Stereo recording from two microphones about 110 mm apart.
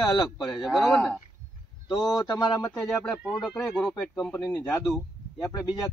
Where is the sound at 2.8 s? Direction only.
Centre (ahead or behind).